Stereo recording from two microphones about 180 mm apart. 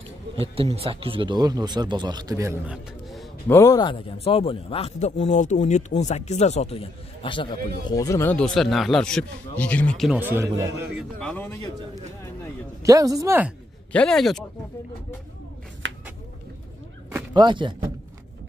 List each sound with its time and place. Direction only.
0.4 s speech: 35° right (ahead or behind); by 3.3 s 5° right (ahead or behind)
3.4 s a man's voice: 15° left (ahead or behind)
7.9 s a man's voice: 15° left (ahead or behind)
10.1 s a man's voice: 10° right (ahead or behind)
11.0 s a man's voice: 5° left (ahead or behind)
12.8 s a man's voice: 20° right (ahead or behind)
13.9 s a man's voice: 5° left (ahead or behind)
17.3 s speech: 25° right (ahead or behind)